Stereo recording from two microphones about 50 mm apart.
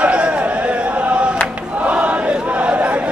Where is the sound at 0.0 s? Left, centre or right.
Right.